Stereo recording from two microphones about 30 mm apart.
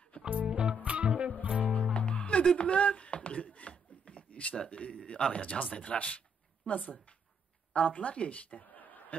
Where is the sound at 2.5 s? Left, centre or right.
Left.